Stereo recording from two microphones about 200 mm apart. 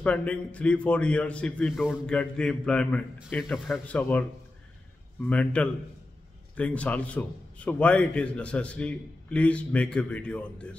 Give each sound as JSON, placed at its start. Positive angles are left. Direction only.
{"t": 0.0, "sound": "a man's voice", "side_deg": 5}